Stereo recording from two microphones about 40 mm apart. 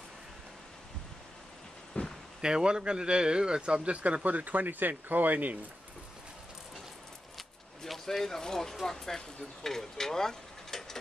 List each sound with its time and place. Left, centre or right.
2.0 s a sound: left
2.4 s speech: right
7.8 s speech: centre